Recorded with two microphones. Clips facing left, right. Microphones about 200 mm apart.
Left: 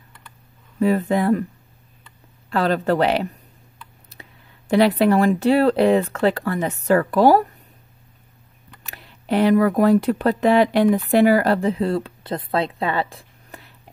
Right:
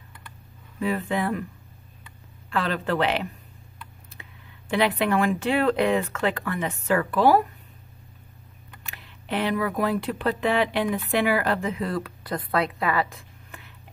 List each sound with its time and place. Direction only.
0.7 s speech: 40° left (ahead or behind)
2.5 s speech: 40° left (ahead or behind)
8.8 s speech: 40° left (ahead or behind)